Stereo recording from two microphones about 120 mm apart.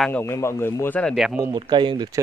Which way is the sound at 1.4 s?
35° right (ahead or behind).